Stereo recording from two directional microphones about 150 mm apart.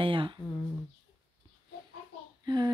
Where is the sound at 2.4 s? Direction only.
30° right (ahead or behind).